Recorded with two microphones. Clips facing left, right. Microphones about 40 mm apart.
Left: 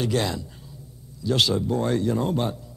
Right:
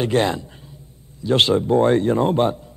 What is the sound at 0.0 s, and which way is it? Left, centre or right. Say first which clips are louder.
Speech: right 6 dB; right.